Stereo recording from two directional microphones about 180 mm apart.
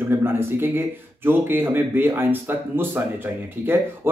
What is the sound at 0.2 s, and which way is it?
Speech, 10° right (ahead or behind).